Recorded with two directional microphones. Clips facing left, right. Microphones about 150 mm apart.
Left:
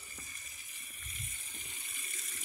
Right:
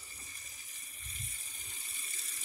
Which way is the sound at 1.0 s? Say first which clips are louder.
Even; 35° right (ahead or behind).